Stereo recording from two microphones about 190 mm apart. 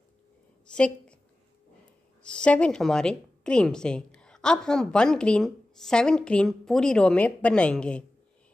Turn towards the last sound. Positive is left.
turn(degrees=5)  # may be behind; listen again after turning